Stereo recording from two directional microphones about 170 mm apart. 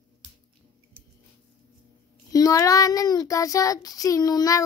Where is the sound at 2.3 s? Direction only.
20° left (ahead or behind).